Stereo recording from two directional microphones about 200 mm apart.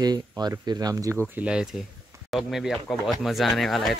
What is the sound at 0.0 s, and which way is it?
Speech, 20° right (ahead or behind).